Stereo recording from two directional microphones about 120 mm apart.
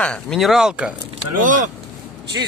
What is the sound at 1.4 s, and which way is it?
Speech, 90° right.